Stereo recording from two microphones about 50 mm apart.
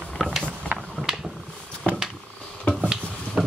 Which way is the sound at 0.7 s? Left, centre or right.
Right.